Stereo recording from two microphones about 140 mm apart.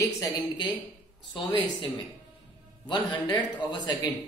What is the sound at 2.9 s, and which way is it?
A man's voice, 30° left (ahead or behind).